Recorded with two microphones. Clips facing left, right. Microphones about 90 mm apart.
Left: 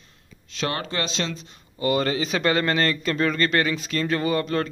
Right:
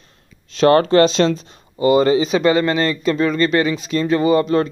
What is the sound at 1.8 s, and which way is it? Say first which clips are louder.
Speech: right 9 dB; 20° right (ahead or behind).